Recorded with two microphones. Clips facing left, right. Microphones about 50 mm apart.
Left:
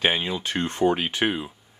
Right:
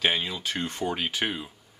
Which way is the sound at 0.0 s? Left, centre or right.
Left.